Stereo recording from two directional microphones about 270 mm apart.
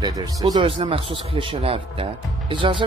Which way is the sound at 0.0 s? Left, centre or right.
Centre.